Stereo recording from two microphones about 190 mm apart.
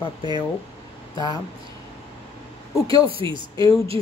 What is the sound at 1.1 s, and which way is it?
Speech, 25° left (ahead or behind).